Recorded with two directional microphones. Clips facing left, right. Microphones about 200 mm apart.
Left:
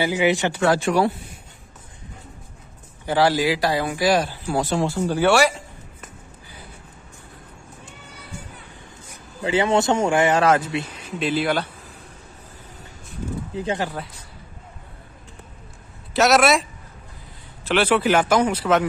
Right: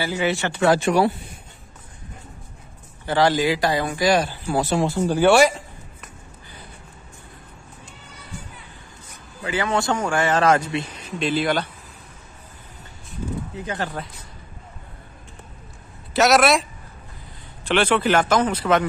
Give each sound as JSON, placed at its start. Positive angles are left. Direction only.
{"t": 0.0, "sound": "speech", "side_deg": 15}
{"t": 0.6, "sound": "speech", "side_deg": -20}
{"t": 3.1, "sound": "speech", "side_deg": 5}
{"t": 9.4, "sound": "a man's voice", "side_deg": 25}
{"t": 10.4, "sound": "speech", "side_deg": 5}
{"t": 13.5, "sound": "speech", "side_deg": 30}
{"t": 16.1, "sound": "speech", "side_deg": 0}
{"t": 17.6, "sound": "speech", "side_deg": 5}